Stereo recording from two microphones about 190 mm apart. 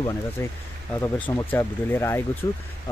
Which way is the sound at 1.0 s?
10° left (ahead or behind).